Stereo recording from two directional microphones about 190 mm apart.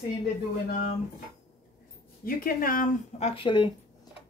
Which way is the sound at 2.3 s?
50° left (ahead or behind).